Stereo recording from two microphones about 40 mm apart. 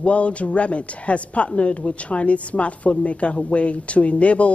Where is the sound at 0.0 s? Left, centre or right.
Left.